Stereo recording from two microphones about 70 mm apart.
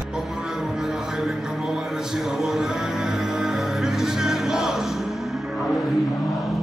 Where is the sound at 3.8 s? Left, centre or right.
Centre.